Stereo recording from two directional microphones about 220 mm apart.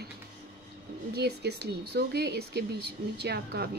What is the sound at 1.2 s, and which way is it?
Speech, 45° right (ahead or behind).